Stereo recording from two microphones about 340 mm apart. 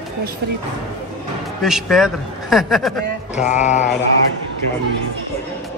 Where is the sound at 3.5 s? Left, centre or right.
Left.